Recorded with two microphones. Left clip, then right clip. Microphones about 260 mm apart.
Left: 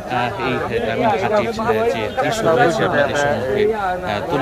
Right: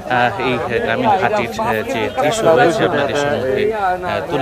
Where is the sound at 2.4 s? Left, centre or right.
Right.